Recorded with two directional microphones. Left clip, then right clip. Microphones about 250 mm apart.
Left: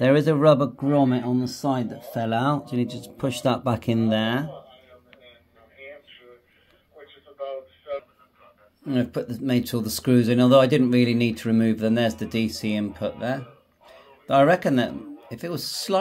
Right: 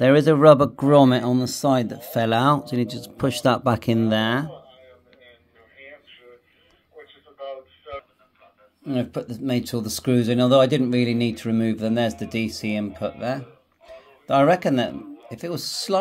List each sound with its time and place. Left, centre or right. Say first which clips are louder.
0.0 s speech: right 4 dB; centre
0.7 s speech: right 6 dB; right; by 4.5 s centre
7.3 s a sound: left 2 dB; right
8.8 s speech: left 1 dB; centre